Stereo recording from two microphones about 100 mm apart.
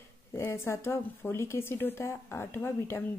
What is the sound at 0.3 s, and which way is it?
Speech, 25° left (ahead or behind).